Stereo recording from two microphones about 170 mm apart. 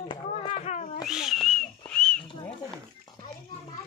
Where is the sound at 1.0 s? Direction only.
5° right (ahead or behind).